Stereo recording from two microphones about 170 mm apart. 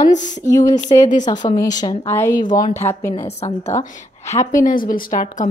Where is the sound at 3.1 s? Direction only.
40° left (ahead or behind).